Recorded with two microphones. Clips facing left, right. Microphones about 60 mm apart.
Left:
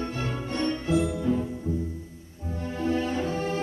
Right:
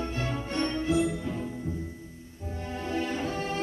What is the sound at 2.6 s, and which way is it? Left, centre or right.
Music, left.